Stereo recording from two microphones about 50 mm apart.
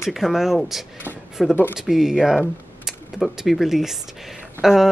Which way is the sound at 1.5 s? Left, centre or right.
Left.